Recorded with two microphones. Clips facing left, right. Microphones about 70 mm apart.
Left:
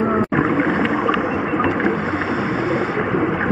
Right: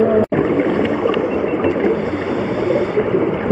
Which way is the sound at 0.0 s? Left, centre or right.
Left.